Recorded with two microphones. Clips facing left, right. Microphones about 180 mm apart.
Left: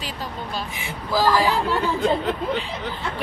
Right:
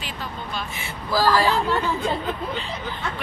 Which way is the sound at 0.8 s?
15° left (ahead or behind).